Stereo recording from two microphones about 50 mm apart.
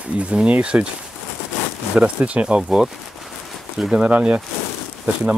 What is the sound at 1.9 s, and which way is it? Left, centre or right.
Speech, right.